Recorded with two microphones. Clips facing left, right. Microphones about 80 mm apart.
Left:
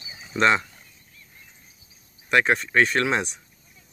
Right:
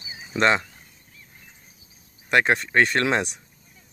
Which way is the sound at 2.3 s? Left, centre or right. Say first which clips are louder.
Even; right.